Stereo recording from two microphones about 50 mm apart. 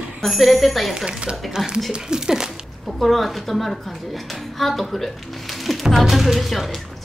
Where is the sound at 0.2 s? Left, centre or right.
Centre.